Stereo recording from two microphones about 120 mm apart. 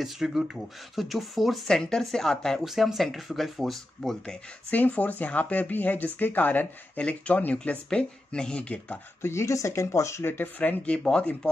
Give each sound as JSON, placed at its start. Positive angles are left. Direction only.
{"t": 0.0, "sound": "speech", "side_deg": 0}
{"t": 9.2, "sound": "speech", "side_deg": 20}